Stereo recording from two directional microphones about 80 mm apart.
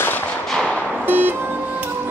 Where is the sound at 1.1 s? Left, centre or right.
Right.